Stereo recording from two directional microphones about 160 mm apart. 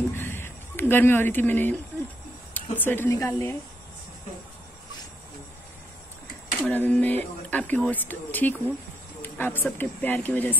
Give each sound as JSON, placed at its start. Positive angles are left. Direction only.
{"t": 0.1, "sound": "a sound", "side_deg": 15}
{"t": 2.5, "sound": "speech", "side_deg": 10}
{"t": 6.6, "sound": "speech", "side_deg": 10}